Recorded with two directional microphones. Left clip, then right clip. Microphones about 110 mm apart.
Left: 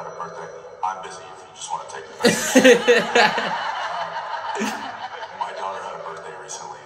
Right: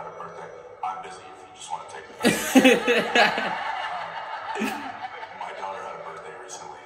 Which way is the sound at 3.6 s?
35° left (ahead or behind).